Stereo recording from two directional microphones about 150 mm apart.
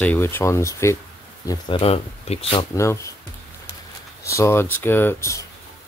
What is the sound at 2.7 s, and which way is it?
Speech, 20° left (ahead or behind).